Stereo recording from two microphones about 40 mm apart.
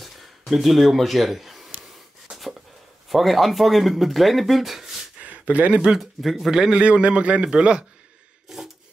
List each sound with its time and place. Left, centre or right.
0.5 s a man's voice: centre
2.3 s a sound: centre
3.1 s speech: centre
5.2 s a sound: right
5.8 s speech: centre
6.7 s a man's voice: right